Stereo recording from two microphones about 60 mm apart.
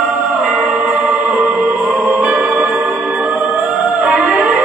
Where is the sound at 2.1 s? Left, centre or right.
Centre.